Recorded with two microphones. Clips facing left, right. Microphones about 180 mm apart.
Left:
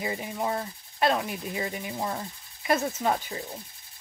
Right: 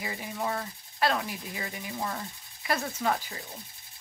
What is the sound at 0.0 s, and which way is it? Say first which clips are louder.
Speech: left 3 dB; 25° left (ahead or behind).